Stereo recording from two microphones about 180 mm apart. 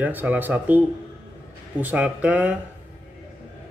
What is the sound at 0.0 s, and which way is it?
Speech, 10° right (ahead or behind).